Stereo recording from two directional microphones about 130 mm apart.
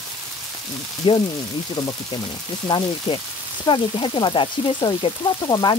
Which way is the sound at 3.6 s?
40° left (ahead or behind).